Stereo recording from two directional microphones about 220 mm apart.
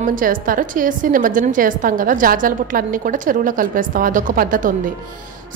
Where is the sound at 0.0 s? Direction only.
40° right (ahead or behind).